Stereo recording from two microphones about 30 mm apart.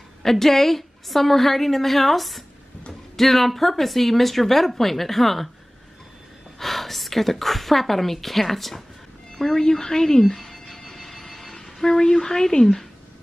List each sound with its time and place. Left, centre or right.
0.2 s a woman's voice: centre
6.6 s a woman's voice: centre
9.6 s a sound: left